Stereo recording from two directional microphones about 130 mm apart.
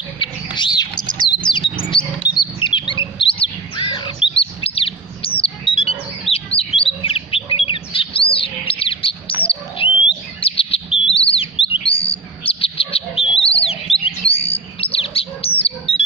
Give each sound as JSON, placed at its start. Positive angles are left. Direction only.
{"t": 0.2, "sound": "bird", "side_deg": 35}
{"t": 1.2, "sound": "chirp", "side_deg": 35}
{"t": 2.0, "sound": "chirp", "side_deg": 0}
{"t": 2.6, "sound": "a sound", "side_deg": 40}
{"t": 3.7, "sound": "chirp", "side_deg": 40}
{"t": 6.8, "sound": "bird", "side_deg": 45}
{"t": 14.3, "sound": "a sound", "side_deg": 50}